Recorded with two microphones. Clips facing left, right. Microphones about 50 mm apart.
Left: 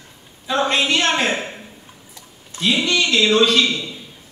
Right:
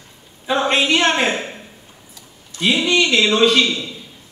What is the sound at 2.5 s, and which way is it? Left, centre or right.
Speech, centre.